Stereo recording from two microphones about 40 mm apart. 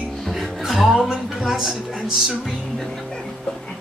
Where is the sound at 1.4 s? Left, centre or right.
Centre.